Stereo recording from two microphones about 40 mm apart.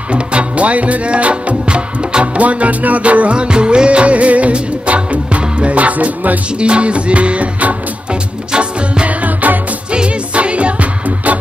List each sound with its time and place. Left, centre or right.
0.1 s music: right
6.6 s music: right
9.0 s music: right
9.8 s music: right